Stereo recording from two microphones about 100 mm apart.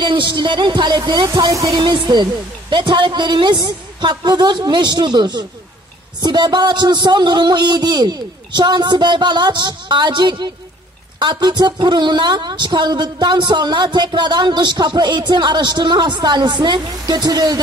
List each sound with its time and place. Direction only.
0.0 s a woman's voice: 50° right (ahead or behind)
1.2 s speech: 35° right (ahead or behind)
1.8 s a woman's voice: 50° right (ahead or behind)